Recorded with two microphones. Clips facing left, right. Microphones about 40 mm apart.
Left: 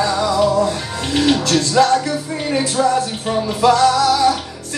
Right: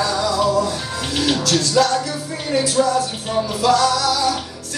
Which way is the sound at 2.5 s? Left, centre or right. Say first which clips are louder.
Left 1 dB; left.